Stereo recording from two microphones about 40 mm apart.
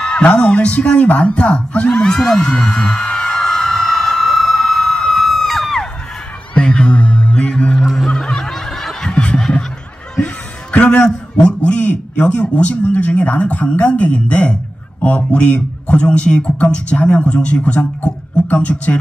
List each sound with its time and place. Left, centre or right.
0.2 s speech: left
2.0 s speech: centre
2.5 s a sound: left
5.1 s crowd: centre
6.6 s music: left
8.1 s snicker: centre
9.1 s music: left
10.7 s a man's voice: left